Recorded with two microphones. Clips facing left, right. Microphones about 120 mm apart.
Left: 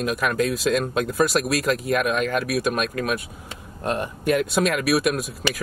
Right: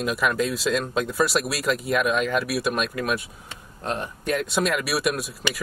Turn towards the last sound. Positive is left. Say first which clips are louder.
# left 4 dB
turn(degrees=0)  # may be behind; listen again after turning